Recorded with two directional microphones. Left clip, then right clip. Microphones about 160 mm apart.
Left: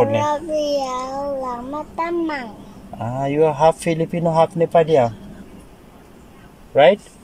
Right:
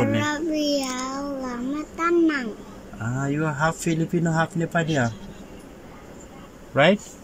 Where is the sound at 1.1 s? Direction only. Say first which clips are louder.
Left 6 dB; 20° left (ahead or behind).